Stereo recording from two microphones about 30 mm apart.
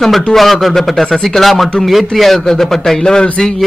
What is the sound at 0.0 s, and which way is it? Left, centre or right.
A man's voice, centre.